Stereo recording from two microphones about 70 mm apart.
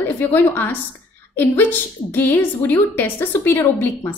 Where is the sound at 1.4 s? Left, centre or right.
Left.